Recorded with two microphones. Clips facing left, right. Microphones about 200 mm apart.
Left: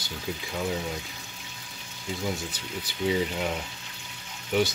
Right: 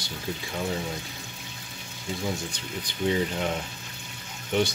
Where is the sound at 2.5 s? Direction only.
5° left (ahead or behind).